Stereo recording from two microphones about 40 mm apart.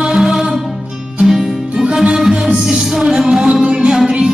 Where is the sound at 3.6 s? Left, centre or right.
Right.